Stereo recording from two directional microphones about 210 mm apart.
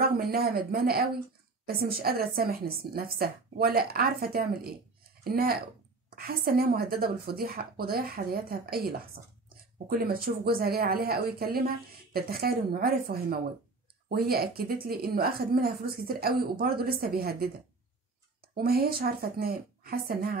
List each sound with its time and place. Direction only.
0.0 s a woman's voice: 45° right (ahead or behind)